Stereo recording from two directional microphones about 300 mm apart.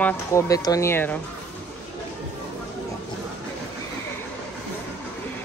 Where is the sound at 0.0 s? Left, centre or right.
Centre.